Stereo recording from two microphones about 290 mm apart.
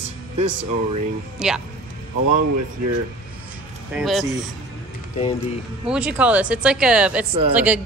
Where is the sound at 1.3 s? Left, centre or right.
Centre.